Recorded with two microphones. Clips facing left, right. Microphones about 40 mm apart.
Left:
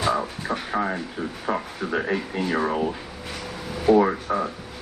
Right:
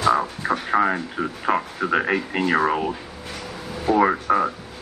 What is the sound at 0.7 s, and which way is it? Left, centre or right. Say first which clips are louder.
Speech: right 7 dB; right.